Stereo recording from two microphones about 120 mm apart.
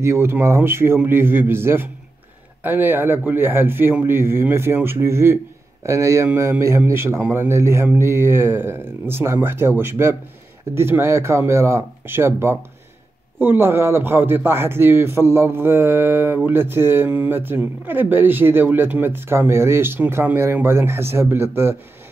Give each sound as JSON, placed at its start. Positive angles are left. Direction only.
{"t": 0.0, "sound": "a man's voice", "side_deg": -20}